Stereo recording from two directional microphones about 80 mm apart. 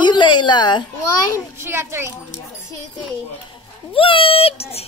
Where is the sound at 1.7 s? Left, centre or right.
Right.